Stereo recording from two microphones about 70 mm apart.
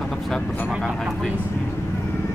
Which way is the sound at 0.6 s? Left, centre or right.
Centre.